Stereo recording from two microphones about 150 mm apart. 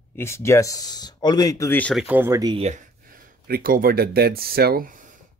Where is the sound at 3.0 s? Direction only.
75° right (ahead or behind).